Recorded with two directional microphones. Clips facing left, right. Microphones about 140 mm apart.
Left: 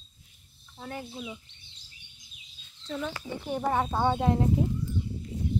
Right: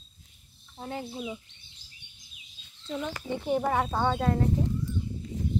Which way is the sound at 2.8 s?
10° right (ahead or behind).